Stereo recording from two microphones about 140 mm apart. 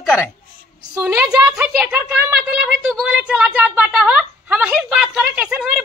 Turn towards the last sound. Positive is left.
turn(degrees=-10)  # may be behind; listen again after turning